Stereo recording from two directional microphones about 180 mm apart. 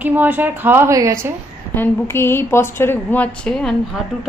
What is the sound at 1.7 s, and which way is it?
A woman's voice, 10° left (ahead or behind).